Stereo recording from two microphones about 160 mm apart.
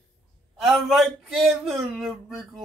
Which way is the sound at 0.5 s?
Centre (ahead or behind).